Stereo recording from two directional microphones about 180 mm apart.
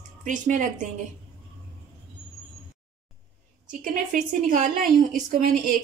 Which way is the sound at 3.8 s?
45° right (ahead or behind).